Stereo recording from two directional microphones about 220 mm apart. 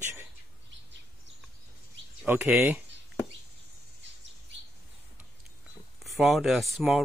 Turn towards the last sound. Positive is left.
turn(degrees=0)  # may be behind; listen again after turning